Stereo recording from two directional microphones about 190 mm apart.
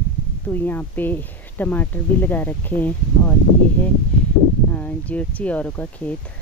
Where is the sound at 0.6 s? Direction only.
10° left (ahead or behind).